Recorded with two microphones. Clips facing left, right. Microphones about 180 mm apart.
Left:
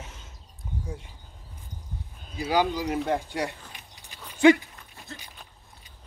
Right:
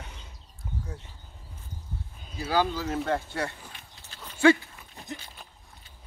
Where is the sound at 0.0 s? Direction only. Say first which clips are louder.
Left 1 dB; 5° left (ahead or behind).